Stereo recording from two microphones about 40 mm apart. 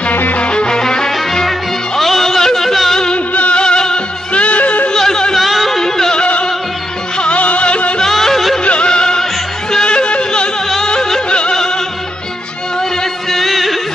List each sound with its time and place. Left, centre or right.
0.1 s music: left
0.4 s music: left; by 3.0 s centre
3.3 s music: left
3.6 s music: left
4.4 s music: left
4.9 s yodeling: centre
5.3 s music: centre
7.2 s music: left
8.0 s music: centre
8.6 s music: left
13.3 s music: centre